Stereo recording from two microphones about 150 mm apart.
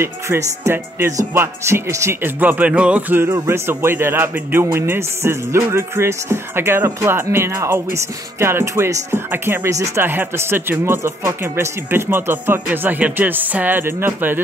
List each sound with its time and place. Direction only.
0.0 s speech: 15° right (ahead or behind)